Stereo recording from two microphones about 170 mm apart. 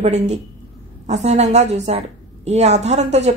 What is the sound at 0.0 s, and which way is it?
A woman's voice, 40° right (ahead or behind).